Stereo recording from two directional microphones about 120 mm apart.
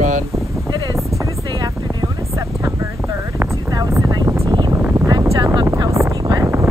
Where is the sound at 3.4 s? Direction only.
25° right (ahead or behind).